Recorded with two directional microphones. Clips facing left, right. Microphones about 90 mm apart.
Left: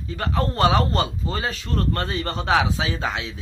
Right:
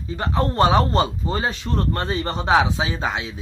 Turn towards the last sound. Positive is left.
turn(degrees=-20)  # may be behind; listen again after turning